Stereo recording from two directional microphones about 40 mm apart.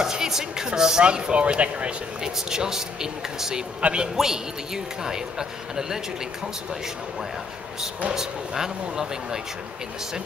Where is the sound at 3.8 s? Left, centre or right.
Right.